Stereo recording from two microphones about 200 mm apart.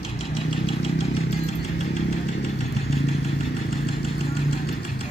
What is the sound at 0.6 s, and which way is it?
Vehicle, 30° left (ahead or behind).